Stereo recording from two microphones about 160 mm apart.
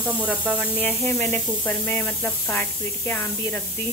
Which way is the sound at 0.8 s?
10° left (ahead or behind).